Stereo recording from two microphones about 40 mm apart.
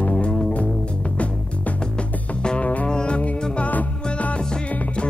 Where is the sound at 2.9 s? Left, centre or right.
Left.